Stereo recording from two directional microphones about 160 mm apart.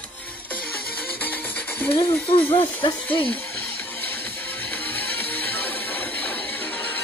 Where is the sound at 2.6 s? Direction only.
35° left (ahead or behind).